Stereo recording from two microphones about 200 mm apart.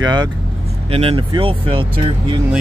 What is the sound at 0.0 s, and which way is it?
Speech, 20° right (ahead or behind).